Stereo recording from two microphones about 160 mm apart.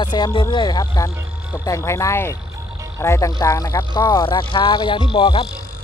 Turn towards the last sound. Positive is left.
turn(degrees=30)  # may be behind; listen again after turning